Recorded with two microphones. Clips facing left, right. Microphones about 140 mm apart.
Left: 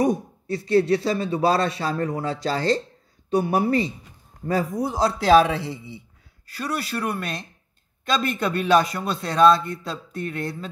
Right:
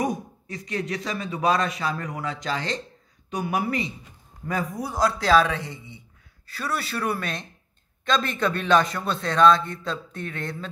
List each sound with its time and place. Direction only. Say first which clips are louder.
0.0 s a man's voice: left 5 dB; 30° left (ahead or behind)
5.5 s a man's voice: left 4 dB; 30° left (ahead or behind)
6.6 s a man's voice: left 1 dB; centre (ahead or behind)